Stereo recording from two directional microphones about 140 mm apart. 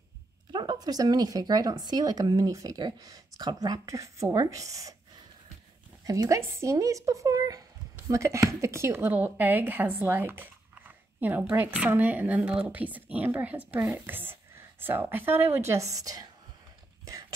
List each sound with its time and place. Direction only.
0.5 s speech: 30° right (ahead or behind)
6.0 s a woman's voice: 25° right (ahead or behind)